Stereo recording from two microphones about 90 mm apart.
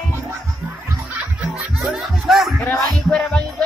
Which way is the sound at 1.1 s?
15° right (ahead or behind).